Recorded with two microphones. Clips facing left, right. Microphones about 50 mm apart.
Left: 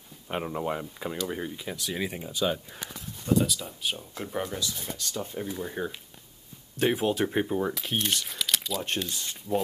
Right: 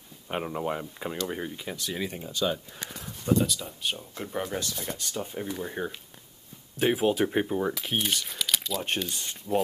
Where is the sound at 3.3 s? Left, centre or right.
Centre.